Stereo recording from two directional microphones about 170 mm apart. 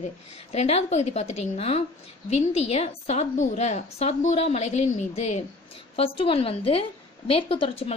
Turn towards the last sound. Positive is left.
turn(degrees=35)  # may be behind; listen again after turning